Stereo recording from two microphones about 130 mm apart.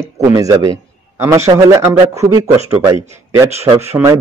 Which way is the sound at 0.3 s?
25° right (ahead or behind).